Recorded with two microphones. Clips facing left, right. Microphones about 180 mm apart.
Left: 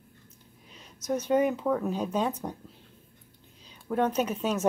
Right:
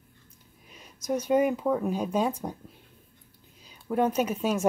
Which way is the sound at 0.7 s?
10° right (ahead or behind).